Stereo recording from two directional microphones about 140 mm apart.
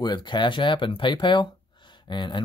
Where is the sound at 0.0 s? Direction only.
30° left (ahead or behind).